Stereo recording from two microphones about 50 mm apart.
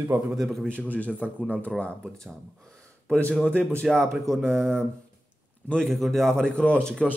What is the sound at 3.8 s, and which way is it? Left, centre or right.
Speech, centre.